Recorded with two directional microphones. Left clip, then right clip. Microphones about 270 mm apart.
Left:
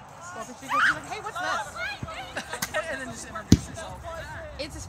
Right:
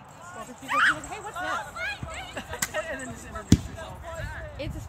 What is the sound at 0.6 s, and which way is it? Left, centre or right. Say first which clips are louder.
Speech: even; right.